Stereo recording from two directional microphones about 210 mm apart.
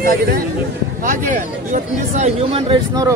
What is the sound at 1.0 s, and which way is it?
Speech, 40° right (ahead or behind).